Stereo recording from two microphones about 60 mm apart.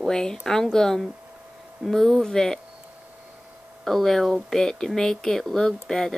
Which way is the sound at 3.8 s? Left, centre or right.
Centre.